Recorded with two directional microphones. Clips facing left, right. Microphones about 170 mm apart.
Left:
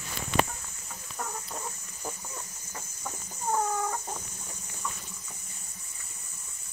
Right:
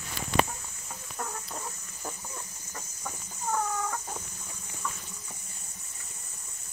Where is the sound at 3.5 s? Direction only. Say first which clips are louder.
Left 2 dB; 15° left (ahead or behind).